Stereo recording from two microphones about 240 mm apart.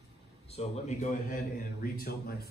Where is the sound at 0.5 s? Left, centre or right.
Left.